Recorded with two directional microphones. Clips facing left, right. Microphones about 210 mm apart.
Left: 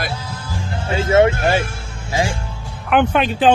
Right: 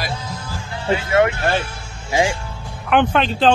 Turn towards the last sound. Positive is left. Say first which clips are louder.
# left 1 dB
turn(degrees=10)  # may be behind; listen again after turning